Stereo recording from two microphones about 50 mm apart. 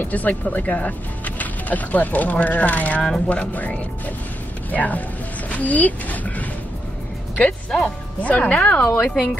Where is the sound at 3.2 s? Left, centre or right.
Left.